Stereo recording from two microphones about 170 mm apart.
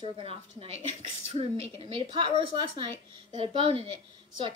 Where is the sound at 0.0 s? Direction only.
30° right (ahead or behind).